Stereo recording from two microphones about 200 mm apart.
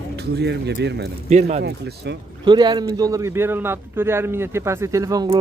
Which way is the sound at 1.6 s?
60° right (ahead or behind).